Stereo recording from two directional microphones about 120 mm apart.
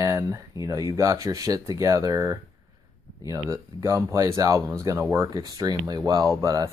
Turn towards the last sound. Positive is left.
turn(degrees=-25)  # may be behind; listen again after turning